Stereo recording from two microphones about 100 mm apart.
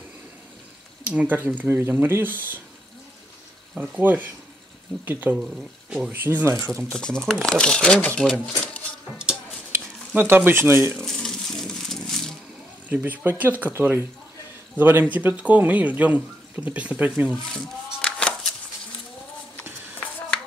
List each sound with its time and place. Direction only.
1.0 s speech: 15° right (ahead or behind)
3.7 s speech: 15° right (ahead or behind)
6.7 s speech: 5° left (ahead or behind)
9.7 s speech: 25° right (ahead or behind)
11.0 s a sound: 5° left (ahead or behind)
12.9 s speech: 20° right (ahead or behind)
17.3 s a sound: 10° left (ahead or behind)